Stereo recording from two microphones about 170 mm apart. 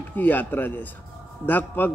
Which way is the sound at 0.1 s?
10° left (ahead or behind).